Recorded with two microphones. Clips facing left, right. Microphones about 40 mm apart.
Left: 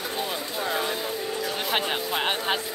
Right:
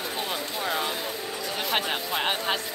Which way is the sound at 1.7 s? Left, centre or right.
Centre.